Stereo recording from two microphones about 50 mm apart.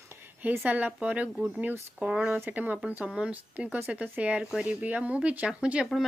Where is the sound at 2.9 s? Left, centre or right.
Right.